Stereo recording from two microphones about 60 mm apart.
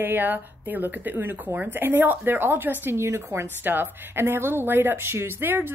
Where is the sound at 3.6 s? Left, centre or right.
Right.